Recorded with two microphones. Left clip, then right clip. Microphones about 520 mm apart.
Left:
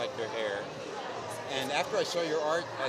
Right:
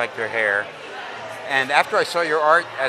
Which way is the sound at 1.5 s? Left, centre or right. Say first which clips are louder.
Right 14 dB; right.